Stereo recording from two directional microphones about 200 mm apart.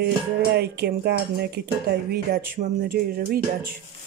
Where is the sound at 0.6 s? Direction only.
55° right (ahead or behind).